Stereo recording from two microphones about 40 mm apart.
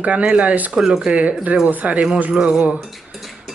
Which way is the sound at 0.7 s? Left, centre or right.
Centre.